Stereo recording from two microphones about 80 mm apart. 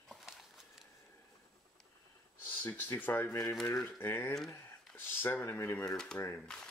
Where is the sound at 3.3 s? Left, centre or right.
Left.